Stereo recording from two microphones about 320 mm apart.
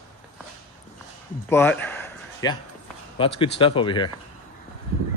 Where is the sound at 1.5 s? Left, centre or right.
Centre.